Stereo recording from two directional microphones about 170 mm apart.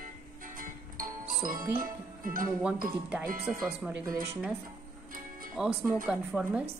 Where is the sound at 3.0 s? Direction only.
10° right (ahead or behind).